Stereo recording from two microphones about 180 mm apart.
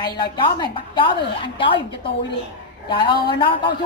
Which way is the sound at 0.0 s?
25° left (ahead or behind).